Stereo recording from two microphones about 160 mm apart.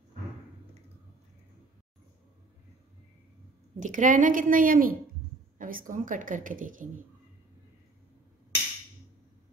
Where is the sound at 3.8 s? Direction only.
55° right (ahead or behind).